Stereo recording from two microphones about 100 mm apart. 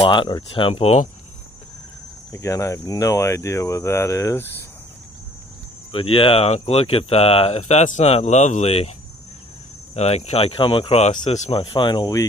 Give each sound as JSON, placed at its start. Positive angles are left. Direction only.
{"t": 0.0, "sound": "speech", "side_deg": 55}
{"t": 2.3, "sound": "speech", "side_deg": 30}
{"t": 5.9, "sound": "speech", "side_deg": 70}
{"t": 9.9, "sound": "speech", "side_deg": 90}